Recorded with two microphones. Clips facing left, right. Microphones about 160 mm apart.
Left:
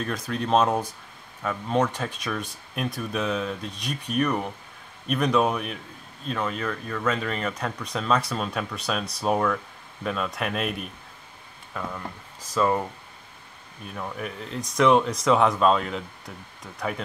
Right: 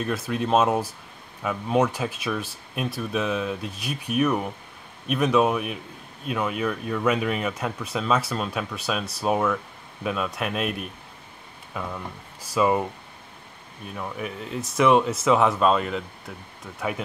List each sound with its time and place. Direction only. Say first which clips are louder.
0.0 s speech: right 2 dB; 5° right (ahead or behind)
13.8 s speech: right 1 dB; 5° right (ahead or behind)